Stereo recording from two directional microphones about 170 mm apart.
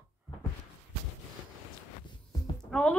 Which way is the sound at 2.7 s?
5° left (ahead or behind).